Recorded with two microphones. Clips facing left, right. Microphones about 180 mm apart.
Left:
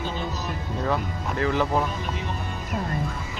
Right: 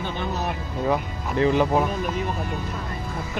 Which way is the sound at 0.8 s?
15° right (ahead or behind).